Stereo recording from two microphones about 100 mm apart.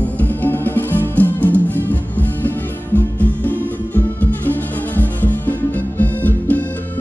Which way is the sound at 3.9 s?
20° left (ahead or behind).